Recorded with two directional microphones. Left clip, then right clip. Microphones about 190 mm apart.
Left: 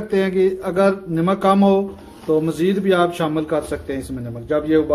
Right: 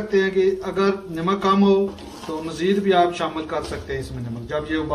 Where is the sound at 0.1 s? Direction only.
55° left (ahead or behind).